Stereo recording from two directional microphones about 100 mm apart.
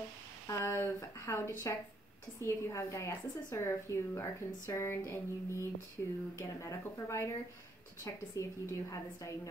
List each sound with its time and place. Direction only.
0.5 s a woman's voice: 25° left (ahead or behind)